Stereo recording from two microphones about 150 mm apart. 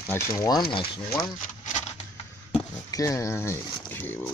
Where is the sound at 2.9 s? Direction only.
20° left (ahead or behind).